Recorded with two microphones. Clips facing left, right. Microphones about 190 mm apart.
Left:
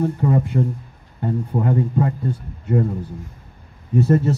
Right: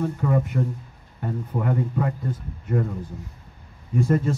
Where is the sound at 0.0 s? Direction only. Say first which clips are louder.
Left 4 dB; 30° left (ahead or behind).